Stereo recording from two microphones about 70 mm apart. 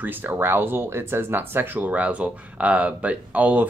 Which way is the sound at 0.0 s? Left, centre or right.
Right.